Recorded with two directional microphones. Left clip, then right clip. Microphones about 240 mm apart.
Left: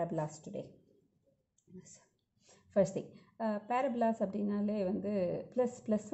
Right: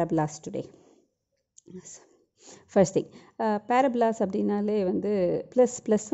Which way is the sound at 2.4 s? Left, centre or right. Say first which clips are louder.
Right 8 dB; right.